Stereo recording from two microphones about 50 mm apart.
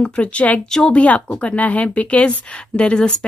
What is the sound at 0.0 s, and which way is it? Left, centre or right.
Speech, left.